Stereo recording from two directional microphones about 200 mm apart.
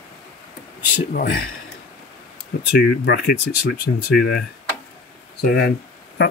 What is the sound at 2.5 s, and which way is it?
Speech, 50° left (ahead or behind).